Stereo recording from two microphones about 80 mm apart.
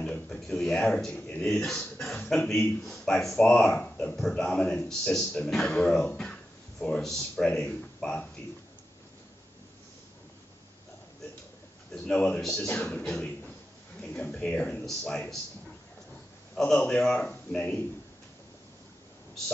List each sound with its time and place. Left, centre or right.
0.0 s a sound: centre
1.4 s a man's voice: centre
11.9 s speech: centre
14.4 s speech: centre
14.9 s a man's voice: centre
16.5 s speech: centre